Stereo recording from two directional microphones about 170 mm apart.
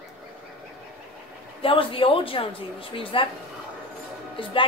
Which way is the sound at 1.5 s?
30° left (ahead or behind).